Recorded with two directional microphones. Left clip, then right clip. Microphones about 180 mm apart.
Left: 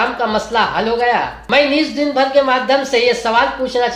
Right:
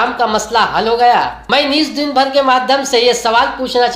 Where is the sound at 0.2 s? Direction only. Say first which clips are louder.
Right 3 dB; 30° right (ahead or behind).